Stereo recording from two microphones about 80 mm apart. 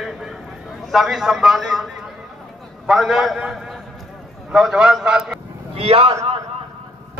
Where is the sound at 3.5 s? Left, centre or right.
Centre.